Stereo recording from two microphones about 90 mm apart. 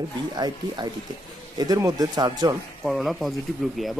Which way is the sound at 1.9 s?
45° right (ahead or behind).